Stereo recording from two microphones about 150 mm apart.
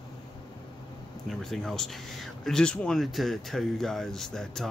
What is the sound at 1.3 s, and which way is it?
A man's voice, centre (ahead or behind).